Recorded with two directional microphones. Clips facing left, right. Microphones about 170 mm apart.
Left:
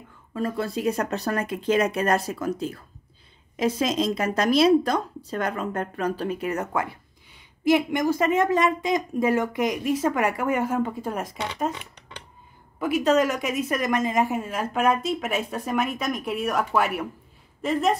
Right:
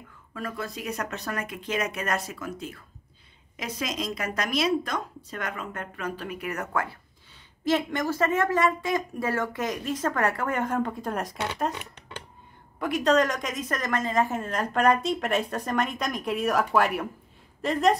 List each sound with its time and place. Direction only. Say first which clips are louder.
0.3 s a woman's voice: left 7 dB; 30° left (ahead or behind); by 17.9 s centre (ahead or behind)